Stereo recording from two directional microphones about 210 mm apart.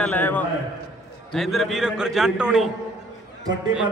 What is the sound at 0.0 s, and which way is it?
A man's voice, 10° left (ahead or behind).